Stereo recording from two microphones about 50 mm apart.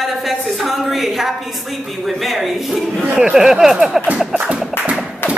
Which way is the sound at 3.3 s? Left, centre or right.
Centre.